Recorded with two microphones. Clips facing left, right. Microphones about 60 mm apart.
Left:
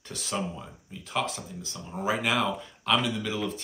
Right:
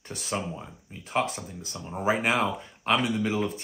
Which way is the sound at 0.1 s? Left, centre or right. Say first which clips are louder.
Right 1 dB; right.